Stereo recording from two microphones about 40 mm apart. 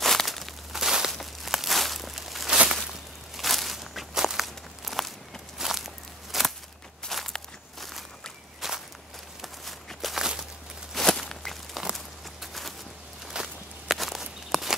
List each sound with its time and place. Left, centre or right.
0.0 s crumpling: centre
0.7 s a sound: centre
2.8 s walk: centre
6.3 s a sound: centre
7.1 s walk: centre
8.5 s walk: centre
10.1 s walk: centre
11.0 s walk: centre
13.4 s walk: right
13.8 s walk: centre